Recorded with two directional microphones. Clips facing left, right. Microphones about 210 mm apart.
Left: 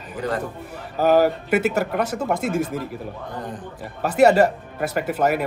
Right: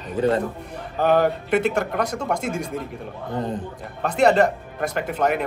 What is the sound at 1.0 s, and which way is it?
Speech, 5° left (ahead or behind).